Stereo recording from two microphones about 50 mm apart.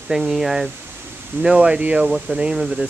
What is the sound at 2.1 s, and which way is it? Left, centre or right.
Speech, centre.